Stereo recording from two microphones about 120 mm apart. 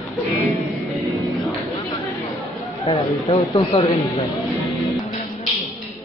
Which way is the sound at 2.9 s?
55° left (ahead or behind).